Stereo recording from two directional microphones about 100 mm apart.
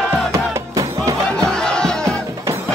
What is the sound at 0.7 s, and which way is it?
Music, 35° right (ahead or behind).